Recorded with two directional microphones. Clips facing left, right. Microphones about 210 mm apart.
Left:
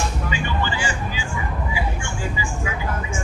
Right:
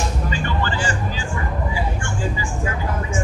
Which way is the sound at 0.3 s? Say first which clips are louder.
Right 1 dB; 10° left (ahead or behind).